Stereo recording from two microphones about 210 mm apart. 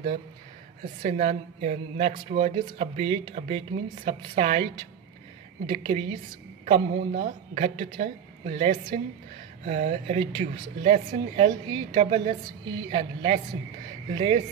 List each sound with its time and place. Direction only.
1.0 s a woman's voice: 35° right (ahead or behind)
5.7 s a woman's voice: 30° right (ahead or behind)
11.7 s a woman's voice: 20° right (ahead or behind)